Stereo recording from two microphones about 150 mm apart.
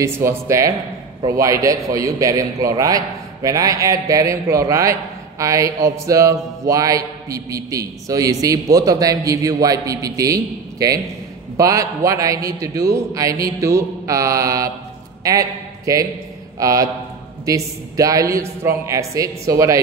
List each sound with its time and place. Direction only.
0.0 s mantra: 20° right (ahead or behind)
15.2 s a man's voice: 20° right (ahead or behind)
16.5 s mantra: 25° right (ahead or behind)